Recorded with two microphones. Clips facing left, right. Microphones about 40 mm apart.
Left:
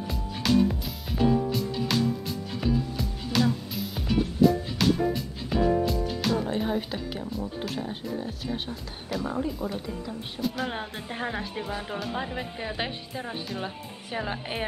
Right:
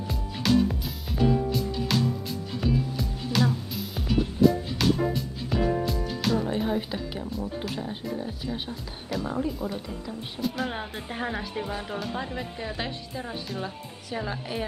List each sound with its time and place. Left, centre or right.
0.1 s music: centre
8.5 s speech: centre; by 14.6 s left